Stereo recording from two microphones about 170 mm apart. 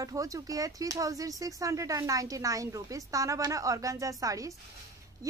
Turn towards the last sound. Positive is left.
turn(degrees=-20)  # may be behind; listen again after turning